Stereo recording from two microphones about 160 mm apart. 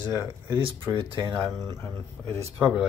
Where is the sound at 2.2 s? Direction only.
40° right (ahead or behind).